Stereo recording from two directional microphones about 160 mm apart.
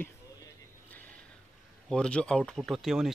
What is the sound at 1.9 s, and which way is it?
Speech, 5° left (ahead or behind).